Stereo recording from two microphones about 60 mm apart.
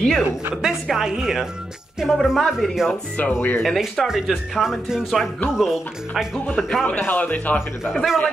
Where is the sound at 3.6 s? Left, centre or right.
Centre.